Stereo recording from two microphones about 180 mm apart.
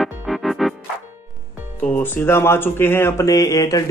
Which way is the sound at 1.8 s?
10° left (ahead or behind).